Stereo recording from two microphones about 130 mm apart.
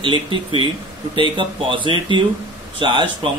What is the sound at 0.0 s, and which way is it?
A man's voice, 40° right (ahead or behind).